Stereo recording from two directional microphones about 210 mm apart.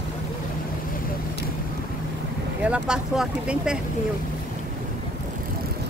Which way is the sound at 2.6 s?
5° right (ahead or behind).